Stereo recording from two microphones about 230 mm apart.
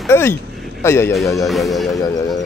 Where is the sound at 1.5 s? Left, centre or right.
Centre.